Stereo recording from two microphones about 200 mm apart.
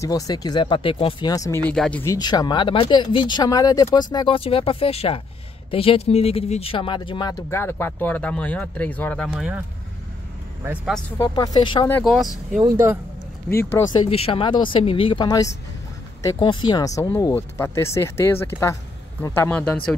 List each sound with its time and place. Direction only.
0.0 s speech: 20° left (ahead or behind)
1.7 s speech: 5° left (ahead or behind)
2.1 s speech: 20° left (ahead or behind)
9.3 s speech: 5° right (ahead or behind)
11.1 s speech: 20° left (ahead or behind)
12.0 s speech: centre (ahead or behind)
12.6 s speech: 15° right (ahead or behind)
13.6 s speech: 10° left (ahead or behind)
14.0 s speech: 30° left (ahead or behind); by 19.8 s 10° left (ahead or behind)